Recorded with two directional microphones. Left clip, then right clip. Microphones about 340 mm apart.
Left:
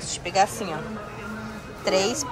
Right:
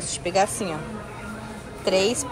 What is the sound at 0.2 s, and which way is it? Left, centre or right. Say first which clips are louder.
Speech: even; centre.